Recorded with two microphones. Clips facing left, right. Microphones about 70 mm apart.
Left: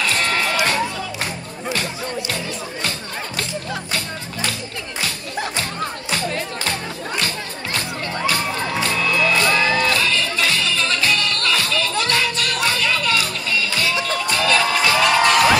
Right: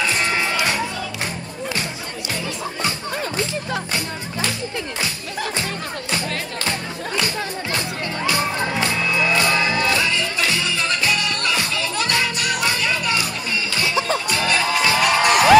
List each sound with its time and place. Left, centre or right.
0.2 s music: centre
8.9 s music: right